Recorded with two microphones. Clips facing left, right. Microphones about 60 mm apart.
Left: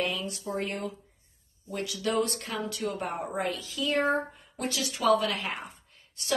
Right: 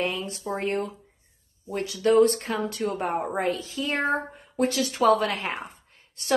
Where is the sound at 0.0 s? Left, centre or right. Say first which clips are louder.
Right 3 dB; right.